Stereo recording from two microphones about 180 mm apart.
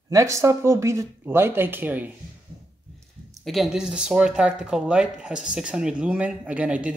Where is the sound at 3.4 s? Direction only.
Centre (ahead or behind).